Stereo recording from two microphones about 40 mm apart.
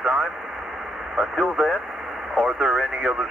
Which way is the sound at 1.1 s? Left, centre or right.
Centre.